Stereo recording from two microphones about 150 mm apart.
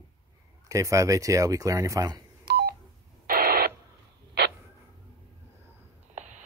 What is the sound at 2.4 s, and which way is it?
Telephone dialing, 90° right.